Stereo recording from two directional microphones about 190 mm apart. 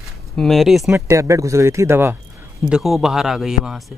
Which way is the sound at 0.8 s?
15° right (ahead or behind).